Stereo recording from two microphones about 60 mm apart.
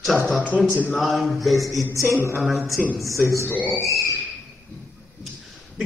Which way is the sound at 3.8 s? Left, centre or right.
Right.